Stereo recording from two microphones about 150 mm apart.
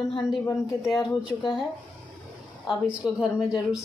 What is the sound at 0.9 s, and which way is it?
Speech, 5° right (ahead or behind).